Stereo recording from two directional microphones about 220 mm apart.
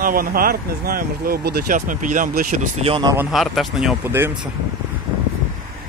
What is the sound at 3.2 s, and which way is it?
Speech, centre (ahead or behind).